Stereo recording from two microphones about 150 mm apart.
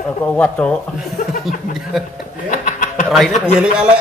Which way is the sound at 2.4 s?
65° left (ahead or behind).